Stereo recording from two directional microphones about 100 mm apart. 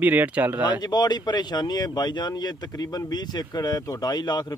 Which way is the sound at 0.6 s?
45° left (ahead or behind).